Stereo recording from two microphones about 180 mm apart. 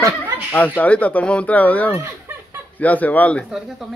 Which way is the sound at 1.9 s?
15° right (ahead or behind).